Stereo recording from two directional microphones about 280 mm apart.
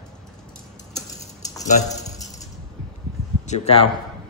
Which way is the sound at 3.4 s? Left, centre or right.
Left.